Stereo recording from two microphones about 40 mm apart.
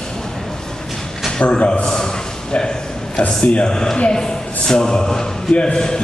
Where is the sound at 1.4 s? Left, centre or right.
Left.